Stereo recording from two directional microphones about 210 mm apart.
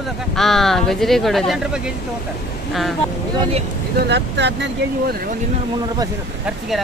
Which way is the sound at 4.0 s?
55° right (ahead or behind).